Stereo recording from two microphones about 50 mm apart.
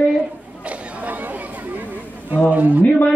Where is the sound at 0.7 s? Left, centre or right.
Right.